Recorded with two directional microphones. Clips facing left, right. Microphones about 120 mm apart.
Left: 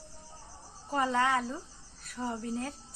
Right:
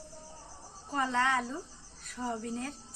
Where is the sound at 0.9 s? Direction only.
5° left (ahead or behind).